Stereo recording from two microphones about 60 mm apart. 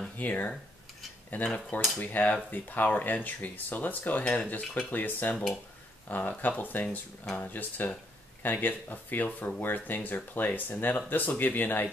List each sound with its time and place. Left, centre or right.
0.2 s speech: left